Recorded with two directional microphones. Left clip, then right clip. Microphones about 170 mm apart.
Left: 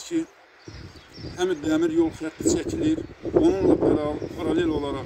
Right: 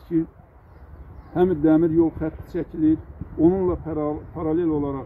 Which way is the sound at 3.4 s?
15° left (ahead or behind).